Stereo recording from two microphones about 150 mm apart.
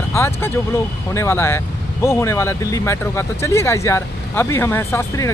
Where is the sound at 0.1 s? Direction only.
15° left (ahead or behind).